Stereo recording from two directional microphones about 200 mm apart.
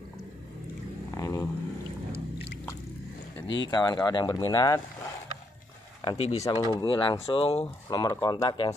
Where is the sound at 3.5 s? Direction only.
20° left (ahead or behind).